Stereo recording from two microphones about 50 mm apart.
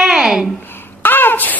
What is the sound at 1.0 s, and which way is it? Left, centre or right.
Babbling, left.